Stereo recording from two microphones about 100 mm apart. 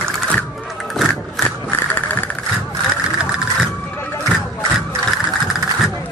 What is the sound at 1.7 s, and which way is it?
Vehicle, 20° left (ahead or behind).